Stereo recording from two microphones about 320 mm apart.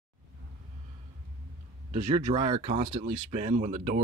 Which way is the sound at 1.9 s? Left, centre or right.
Right.